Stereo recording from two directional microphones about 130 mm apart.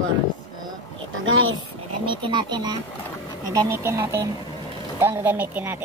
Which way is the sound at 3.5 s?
20° right (ahead or behind).